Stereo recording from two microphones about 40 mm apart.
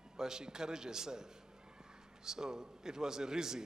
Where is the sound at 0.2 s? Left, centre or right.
Centre.